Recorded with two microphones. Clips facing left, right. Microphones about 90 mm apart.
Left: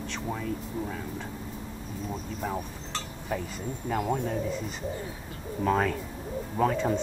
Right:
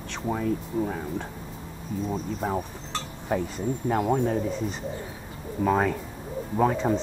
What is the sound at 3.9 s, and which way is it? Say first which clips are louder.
Speech: right 4 dB; 25° right (ahead or behind).